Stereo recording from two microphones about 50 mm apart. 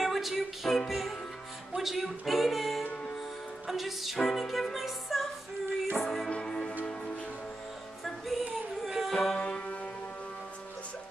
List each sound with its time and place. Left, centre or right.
0.0 s music: centre
6.4 s music: centre
8.0 s female singing: centre
9.1 s music: centre
9.4 s music: left